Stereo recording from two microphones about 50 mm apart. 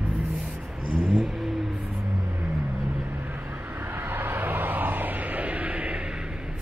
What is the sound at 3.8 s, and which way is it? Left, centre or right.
Vehicle, right.